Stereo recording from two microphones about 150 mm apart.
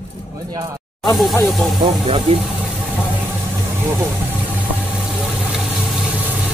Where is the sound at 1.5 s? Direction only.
Centre (ahead or behind).